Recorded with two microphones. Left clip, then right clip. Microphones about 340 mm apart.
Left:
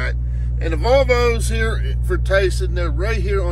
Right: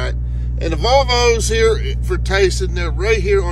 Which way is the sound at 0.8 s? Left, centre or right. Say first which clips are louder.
Right 1 dB; centre.